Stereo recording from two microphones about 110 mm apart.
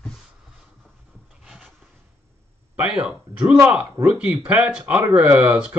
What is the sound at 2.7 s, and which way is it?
Speech, 10° right (ahead or behind).